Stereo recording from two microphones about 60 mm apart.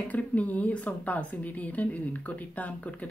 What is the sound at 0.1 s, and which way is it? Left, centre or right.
Speech, left.